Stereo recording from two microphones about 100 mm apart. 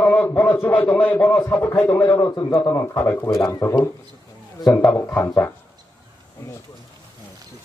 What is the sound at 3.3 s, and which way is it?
Speech, 35° left (ahead or behind).